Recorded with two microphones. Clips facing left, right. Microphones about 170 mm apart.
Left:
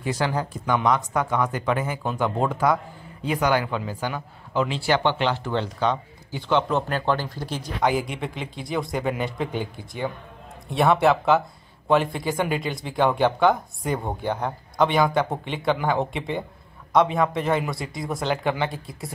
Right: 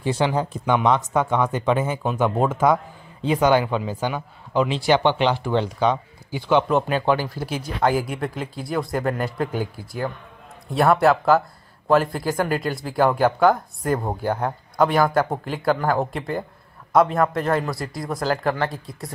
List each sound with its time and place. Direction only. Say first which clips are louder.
0.0 s speech: right 4 dB; 25° right (ahead or behind); by 19.1 s centre (ahead or behind)